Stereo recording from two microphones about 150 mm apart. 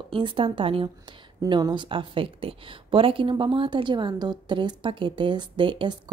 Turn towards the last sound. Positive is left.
turn(degrees=-30)  # may be behind; listen again after turning